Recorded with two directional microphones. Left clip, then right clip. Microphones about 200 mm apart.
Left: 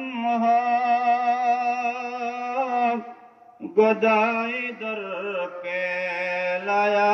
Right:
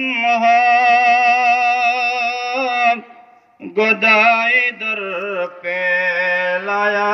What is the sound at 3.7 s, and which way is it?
Mantra, 55° right (ahead or behind).